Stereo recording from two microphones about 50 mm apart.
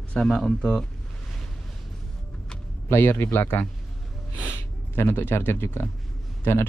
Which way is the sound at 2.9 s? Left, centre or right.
Left.